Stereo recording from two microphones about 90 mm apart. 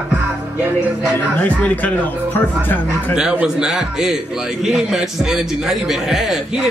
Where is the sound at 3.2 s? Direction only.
10° right (ahead or behind).